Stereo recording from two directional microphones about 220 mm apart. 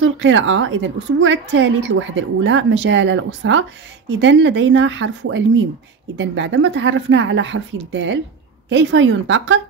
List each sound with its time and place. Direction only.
0.0 s a woman's voice: 60° right (ahead or behind)